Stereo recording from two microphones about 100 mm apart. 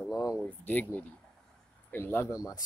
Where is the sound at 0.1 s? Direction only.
40° left (ahead or behind).